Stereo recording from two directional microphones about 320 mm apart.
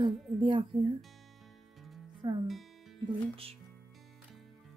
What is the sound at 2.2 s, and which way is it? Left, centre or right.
Speech, centre.